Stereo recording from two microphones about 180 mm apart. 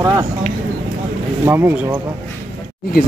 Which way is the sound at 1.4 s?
15° right (ahead or behind).